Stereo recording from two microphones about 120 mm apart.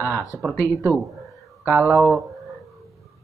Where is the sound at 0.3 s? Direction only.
25° left (ahead or behind).